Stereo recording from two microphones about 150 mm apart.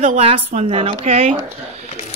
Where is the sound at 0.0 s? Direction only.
45° right (ahead or behind).